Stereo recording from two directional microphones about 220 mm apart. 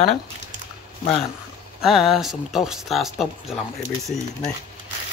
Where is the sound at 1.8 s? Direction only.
Centre (ahead or behind).